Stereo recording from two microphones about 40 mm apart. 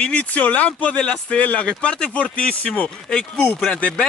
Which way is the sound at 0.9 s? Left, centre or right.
Left.